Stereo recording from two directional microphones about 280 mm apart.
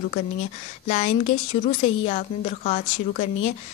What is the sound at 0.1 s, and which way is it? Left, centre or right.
A woman's voice, left.